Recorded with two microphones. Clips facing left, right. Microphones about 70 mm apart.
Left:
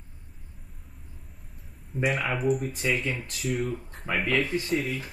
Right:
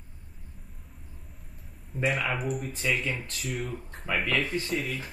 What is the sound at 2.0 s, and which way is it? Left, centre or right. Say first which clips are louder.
Speech: left 3 dB; centre.